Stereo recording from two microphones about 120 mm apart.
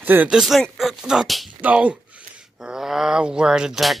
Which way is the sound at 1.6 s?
10° right (ahead or behind).